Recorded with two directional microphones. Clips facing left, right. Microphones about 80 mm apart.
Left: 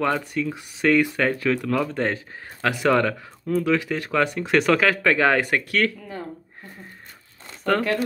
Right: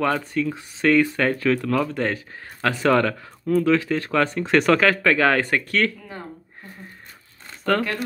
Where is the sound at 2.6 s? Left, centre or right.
Centre.